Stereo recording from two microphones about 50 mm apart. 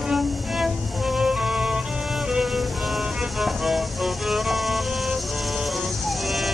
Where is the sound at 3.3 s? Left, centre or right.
Centre.